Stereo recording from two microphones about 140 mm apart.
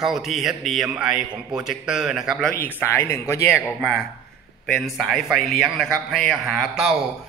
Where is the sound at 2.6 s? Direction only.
15° left (ahead or behind).